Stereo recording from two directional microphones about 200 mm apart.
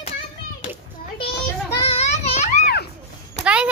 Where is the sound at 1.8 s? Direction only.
30° left (ahead or behind).